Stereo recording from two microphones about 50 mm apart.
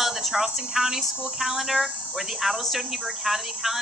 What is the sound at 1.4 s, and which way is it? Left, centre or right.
Speech, centre.